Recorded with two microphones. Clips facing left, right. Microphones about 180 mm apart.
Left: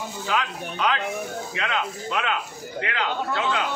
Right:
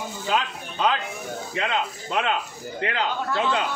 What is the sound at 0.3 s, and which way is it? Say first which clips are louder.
A man's voice: right 1 dB; 30° right (ahead or behind).